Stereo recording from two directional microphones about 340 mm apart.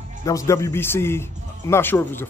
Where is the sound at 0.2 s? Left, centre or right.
Centre.